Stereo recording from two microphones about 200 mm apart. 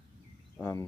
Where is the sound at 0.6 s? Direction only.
15° left (ahead or behind).